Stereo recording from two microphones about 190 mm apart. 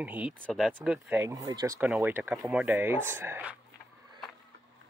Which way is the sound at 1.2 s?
20° right (ahead or behind).